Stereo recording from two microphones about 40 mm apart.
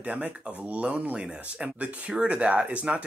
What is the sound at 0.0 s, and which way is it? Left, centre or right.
Speech, right.